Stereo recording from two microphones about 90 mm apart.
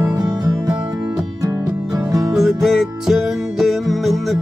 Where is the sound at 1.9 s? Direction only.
35° right (ahead or behind).